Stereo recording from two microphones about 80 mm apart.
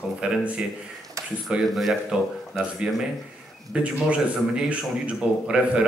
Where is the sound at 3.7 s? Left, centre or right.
Centre.